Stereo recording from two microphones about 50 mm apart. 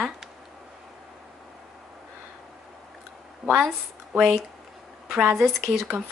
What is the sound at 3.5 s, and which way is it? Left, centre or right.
Speech, centre.